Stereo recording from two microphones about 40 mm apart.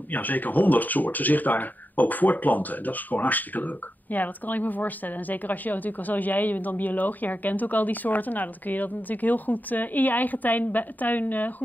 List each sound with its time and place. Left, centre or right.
0.1 s speech: left